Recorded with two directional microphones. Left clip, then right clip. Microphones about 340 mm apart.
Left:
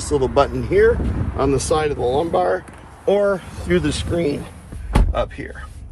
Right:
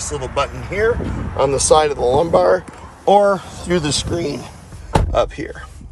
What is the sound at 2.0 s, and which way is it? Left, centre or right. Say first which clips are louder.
Speech: right 4 dB; right.